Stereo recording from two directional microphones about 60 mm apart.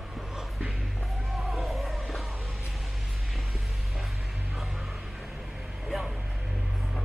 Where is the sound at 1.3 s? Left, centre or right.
Centre.